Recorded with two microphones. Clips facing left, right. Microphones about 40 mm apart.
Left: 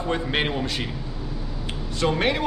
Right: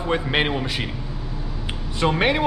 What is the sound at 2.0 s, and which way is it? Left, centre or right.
Speech, centre.